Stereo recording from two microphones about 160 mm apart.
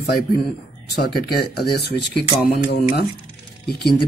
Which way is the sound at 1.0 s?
75° left (ahead or behind).